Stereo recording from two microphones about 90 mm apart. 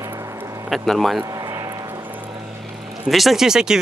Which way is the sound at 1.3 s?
40° right (ahead or behind).